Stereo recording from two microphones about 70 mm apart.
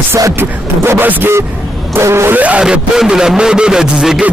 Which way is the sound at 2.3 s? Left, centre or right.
Centre.